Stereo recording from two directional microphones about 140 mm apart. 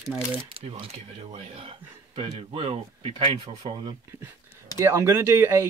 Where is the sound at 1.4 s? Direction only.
40° right (ahead or behind).